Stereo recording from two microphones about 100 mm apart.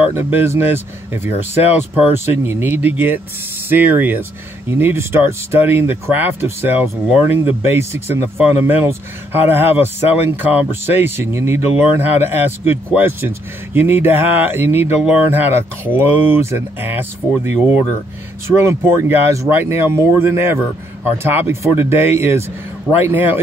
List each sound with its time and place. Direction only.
0.1 s speech: 25° right (ahead or behind)